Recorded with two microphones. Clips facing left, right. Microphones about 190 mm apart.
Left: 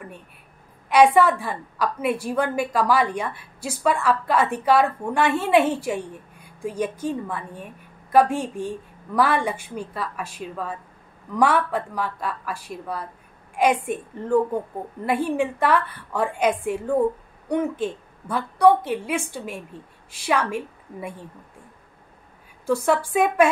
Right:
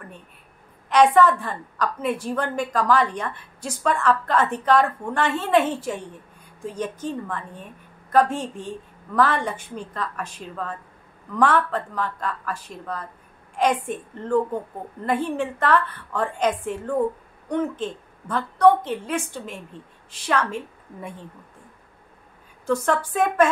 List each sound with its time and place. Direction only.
0.8 s a woman's voice: 10° left (ahead or behind)
22.7 s a woman's voice: 10° left (ahead or behind)